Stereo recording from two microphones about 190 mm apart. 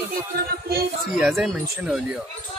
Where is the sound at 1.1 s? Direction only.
5° right (ahead or behind).